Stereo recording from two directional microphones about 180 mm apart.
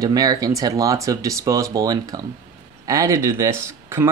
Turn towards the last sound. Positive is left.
turn(degrees=-15)  # may be behind; listen again after turning